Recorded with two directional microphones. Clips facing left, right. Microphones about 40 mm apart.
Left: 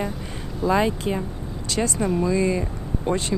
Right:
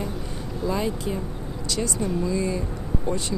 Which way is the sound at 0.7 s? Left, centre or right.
Left.